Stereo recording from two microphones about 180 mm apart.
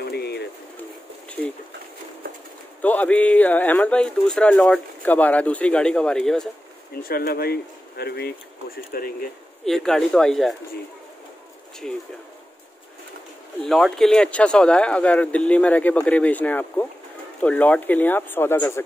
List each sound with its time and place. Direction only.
0.0 s a sound: 65° left (ahead or behind)
2.8 s speech: 10° left (ahead or behind)
6.9 s speech: 55° left (ahead or behind)
9.7 s speech: centre (ahead or behind)
13.7 s speech: centre (ahead or behind)